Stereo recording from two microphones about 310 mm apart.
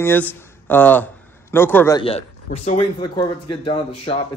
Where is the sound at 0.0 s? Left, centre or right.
Centre.